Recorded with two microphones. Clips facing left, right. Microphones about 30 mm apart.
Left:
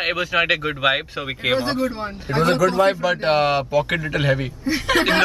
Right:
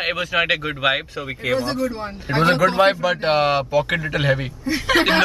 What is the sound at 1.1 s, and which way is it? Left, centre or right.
Speech, left.